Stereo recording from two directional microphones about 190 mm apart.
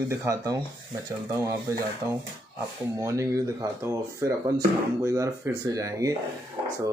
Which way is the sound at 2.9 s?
15° right (ahead or behind).